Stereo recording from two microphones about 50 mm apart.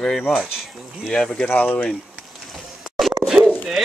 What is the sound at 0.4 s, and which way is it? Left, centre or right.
Speech, centre.